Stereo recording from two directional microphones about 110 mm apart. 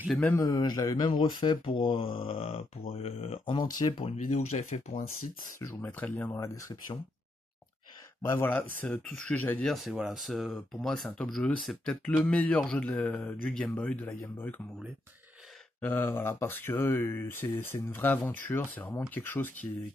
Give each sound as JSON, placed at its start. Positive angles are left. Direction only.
{"t": 0.4, "sound": "speech", "side_deg": 40}
{"t": 1.7, "sound": "speech", "side_deg": 55}
{"t": 3.5, "sound": "speech", "side_deg": 45}
{"t": 4.0, "sound": "speech", "side_deg": 90}
{"t": 5.8, "sound": "speech", "side_deg": 15}
{"t": 8.3, "sound": "speech", "side_deg": 20}
{"t": 9.6, "sound": "speech", "side_deg": 5}
{"t": 15.8, "sound": "speech", "side_deg": 20}